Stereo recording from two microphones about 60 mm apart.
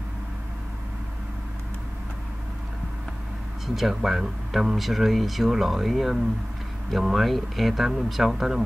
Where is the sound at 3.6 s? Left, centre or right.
Centre.